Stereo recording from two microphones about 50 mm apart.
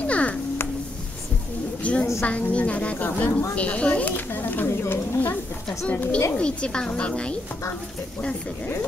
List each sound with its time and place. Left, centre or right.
0.0 s music: left
1.8 s a sound: left
2.2 s a woman's voice: left
4.3 s a sound: left
4.8 s speech: left
5.9 s a woman's voice: left